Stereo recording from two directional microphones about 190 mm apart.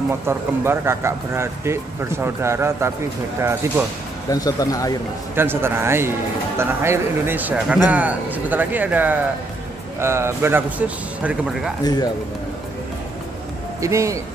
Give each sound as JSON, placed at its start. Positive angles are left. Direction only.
{"t": 0.1, "sound": "speech", "side_deg": -10}
{"t": 4.3, "sound": "speech", "side_deg": 20}
{"t": 5.3, "sound": "speech", "side_deg": -10}
{"t": 11.8, "sound": "speech", "side_deg": 20}
{"t": 13.7, "sound": "speech", "side_deg": -15}